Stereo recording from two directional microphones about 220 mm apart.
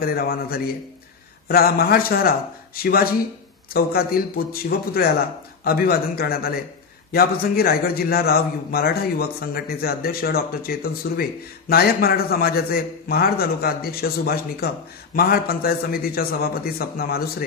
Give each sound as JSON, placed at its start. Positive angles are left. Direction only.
{"t": 0.0, "sound": "a man's voice", "side_deg": 45}